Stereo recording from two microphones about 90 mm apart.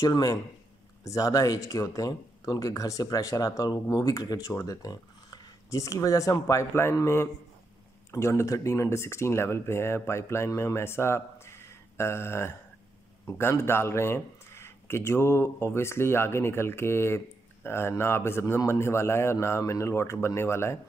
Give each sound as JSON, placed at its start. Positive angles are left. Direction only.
{"t": 0.0, "sound": "speech", "side_deg": 45}